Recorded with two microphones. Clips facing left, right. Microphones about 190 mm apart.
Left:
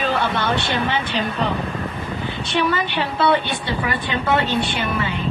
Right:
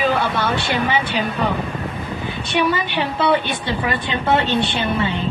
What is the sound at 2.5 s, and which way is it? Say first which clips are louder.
A woman's voice: right 1 dB; 15° right (ahead or behind).